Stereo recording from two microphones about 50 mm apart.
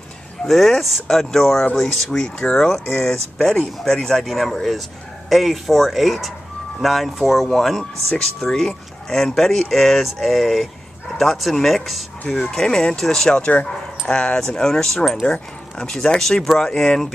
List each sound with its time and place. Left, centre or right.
0.5 s speech: centre
4.3 s speech: centre